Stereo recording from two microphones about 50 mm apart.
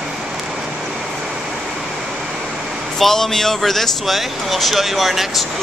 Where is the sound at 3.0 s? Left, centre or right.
Centre.